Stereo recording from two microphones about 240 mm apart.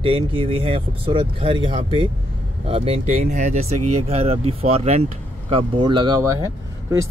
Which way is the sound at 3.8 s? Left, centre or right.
Right.